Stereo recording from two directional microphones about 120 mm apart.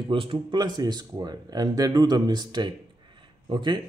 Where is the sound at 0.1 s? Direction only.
45° right (ahead or behind).